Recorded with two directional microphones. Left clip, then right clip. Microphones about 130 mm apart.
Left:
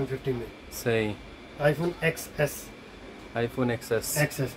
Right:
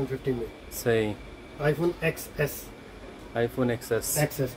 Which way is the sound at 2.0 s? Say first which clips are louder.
Left 1 dB; 15° left (ahead or behind).